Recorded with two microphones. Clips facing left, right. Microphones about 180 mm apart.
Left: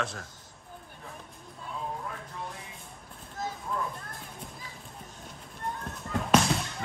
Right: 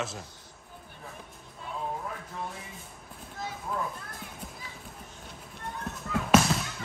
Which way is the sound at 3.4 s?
45° left (ahead or behind).